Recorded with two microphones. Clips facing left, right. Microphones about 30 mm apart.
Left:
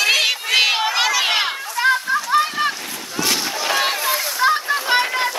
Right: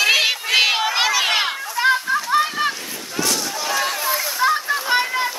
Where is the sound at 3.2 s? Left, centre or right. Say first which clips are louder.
Left 2 dB; left.